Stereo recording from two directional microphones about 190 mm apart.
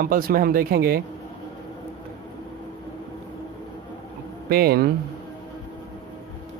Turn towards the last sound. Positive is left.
turn(degrees=-55)  # may be behind; listen again after turning